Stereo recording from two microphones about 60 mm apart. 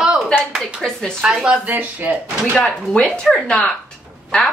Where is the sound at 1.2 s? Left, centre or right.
Centre.